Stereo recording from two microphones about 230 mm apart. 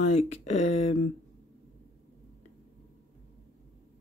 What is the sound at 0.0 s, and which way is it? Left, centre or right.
Speech, left.